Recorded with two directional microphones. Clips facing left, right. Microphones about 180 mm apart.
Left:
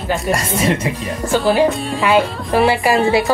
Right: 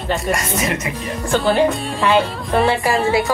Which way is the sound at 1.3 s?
Centre (ahead or behind).